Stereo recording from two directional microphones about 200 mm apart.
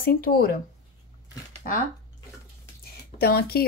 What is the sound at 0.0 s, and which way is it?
Speech, 50° left (ahead or behind).